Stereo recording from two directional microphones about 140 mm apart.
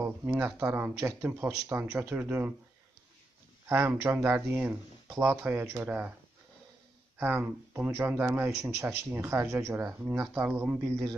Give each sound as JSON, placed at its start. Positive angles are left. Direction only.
{"t": 0.0, "sound": "speech", "side_deg": -15}
{"t": 3.6, "sound": "speech", "side_deg": -15}
{"t": 7.2, "sound": "speech", "side_deg": -15}